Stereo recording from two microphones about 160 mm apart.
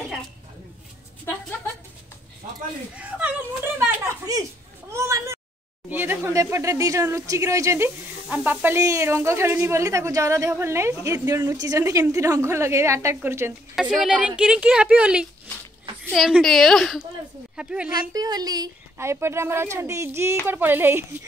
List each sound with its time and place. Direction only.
3.0 s a sound: 10° right (ahead or behind)
4.9 s meow: 20° right (ahead or behind)
5.9 s speech: 10° right (ahead or behind)
13.7 s a woman's voice: centre (ahead or behind)
18.1 s speech: 25° right (ahead or behind)